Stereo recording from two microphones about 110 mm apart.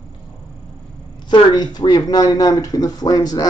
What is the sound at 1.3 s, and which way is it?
Speech, 40° left (ahead or behind).